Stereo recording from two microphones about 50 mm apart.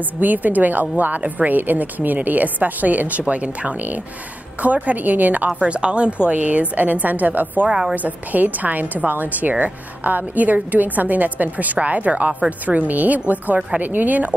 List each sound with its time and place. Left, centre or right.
0.2 s a woman's voice: right
5.5 s a woman's voice: centre; by 14.3 s right